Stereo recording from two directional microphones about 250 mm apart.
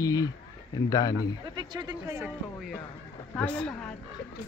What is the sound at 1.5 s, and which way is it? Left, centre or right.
Speech, centre.